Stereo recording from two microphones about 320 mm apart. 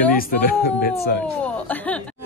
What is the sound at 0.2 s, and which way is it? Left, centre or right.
Speech, left.